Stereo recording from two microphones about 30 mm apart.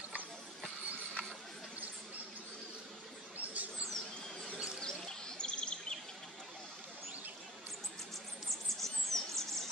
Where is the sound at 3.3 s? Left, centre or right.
Right.